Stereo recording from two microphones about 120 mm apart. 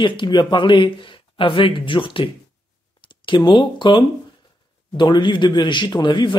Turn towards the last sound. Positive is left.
turn(degrees=40)  # may be behind; listen again after turning